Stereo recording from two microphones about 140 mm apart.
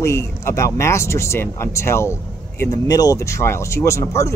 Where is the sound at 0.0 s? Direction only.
20° left (ahead or behind).